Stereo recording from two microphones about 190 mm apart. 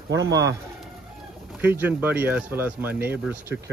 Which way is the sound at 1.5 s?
10° right (ahead or behind).